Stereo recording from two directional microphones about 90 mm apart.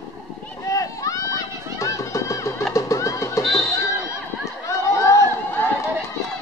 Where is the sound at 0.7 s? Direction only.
40° left (ahead or behind).